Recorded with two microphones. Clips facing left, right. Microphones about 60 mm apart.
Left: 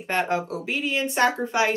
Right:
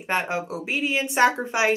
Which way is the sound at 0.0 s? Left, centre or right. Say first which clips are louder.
Left 1 dB; centre.